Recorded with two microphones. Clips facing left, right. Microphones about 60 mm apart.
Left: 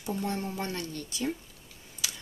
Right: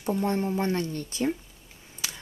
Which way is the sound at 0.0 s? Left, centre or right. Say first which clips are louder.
Right 6 dB; right.